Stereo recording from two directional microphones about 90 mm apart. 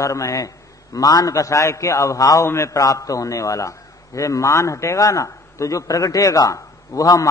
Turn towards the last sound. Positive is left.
turn(degrees=40)  # may be behind; listen again after turning